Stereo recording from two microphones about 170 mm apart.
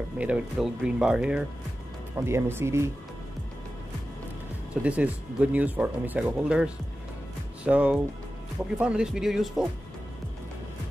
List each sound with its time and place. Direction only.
0.2 s speech: 5° right (ahead or behind)
2.1 s speech: 15° right (ahead or behind)
4.8 s speech: 10° right (ahead or behind)